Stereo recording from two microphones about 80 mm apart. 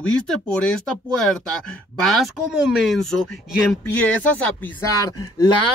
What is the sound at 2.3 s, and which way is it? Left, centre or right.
Speech, centre.